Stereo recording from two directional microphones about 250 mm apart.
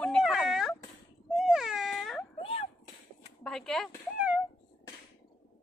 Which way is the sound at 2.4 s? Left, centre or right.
Left.